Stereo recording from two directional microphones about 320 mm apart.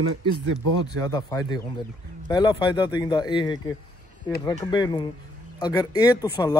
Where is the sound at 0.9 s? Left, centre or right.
Centre.